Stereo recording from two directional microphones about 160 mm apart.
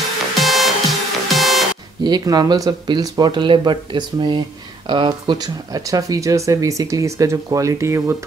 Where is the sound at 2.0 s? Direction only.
25° right (ahead or behind).